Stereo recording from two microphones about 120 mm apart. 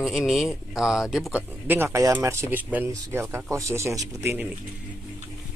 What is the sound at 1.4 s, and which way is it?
Speech, 15° right (ahead or behind).